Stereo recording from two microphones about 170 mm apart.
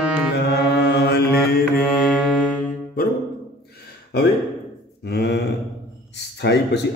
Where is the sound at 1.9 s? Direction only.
5° right (ahead or behind).